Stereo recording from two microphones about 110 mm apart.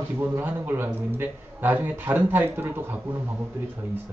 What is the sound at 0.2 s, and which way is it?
A man's voice, 15° right (ahead or behind).